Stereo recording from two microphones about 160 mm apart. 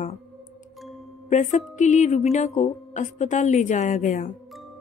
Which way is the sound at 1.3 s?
50° left (ahead or behind).